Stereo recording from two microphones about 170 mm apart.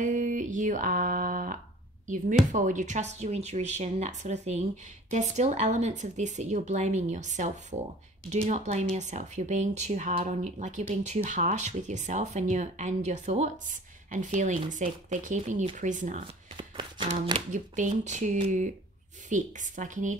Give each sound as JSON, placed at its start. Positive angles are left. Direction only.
{"t": 0.0, "sound": "a sound", "side_deg": -50}
{"t": 2.0, "sound": "speech", "side_deg": -50}
{"t": 16.5, "sound": "music", "side_deg": -30}
{"t": 17.5, "sound": "speech", "side_deg": -45}